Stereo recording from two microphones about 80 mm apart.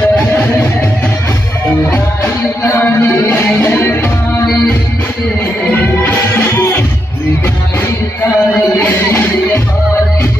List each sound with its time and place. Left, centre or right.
2.2 s music: left
5.7 s music: left
6.5 s music: left
8.4 s music: left